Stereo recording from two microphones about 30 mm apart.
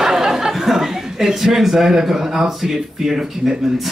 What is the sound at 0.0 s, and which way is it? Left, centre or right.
A man's voice, centre.